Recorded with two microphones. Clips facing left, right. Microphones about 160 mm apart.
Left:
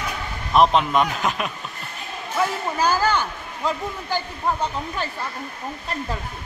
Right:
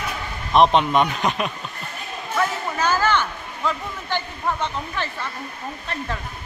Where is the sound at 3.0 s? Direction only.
35° left (ahead or behind).